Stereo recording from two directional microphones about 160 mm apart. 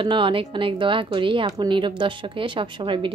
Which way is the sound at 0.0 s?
30° right (ahead or behind).